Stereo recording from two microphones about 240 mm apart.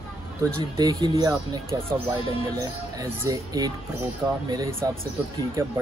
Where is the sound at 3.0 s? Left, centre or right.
Centre.